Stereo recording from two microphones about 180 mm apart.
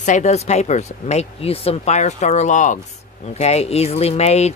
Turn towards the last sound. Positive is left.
turn(degrees=35)  # may be behind; listen again after turning